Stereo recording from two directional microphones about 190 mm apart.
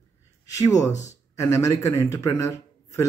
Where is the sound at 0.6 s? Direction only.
15° left (ahead or behind).